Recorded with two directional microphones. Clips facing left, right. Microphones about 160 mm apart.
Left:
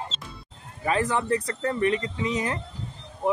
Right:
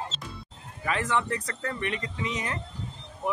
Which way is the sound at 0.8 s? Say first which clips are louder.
Left 3 dB; 30° left (ahead or behind).